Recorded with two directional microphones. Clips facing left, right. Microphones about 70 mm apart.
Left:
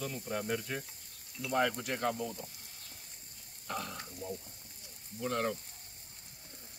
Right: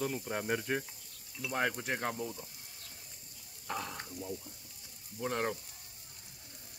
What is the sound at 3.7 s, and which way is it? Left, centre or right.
Speech, right.